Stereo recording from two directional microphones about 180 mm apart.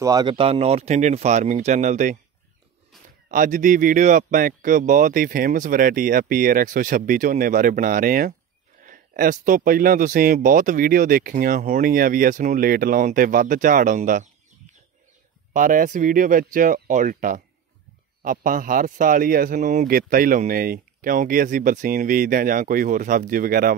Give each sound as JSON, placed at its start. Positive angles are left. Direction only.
{"t": 0.0, "sound": "speech", "side_deg": -20}
{"t": 2.9, "sound": "a sound", "side_deg": 0}
{"t": 3.3, "sound": "speech", "side_deg": -45}
{"t": 15.5, "sound": "speech", "side_deg": -45}